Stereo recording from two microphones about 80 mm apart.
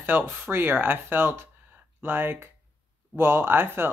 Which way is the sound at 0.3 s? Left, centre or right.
Right.